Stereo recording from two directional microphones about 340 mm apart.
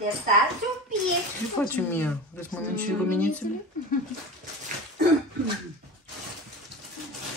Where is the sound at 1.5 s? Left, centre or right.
Centre.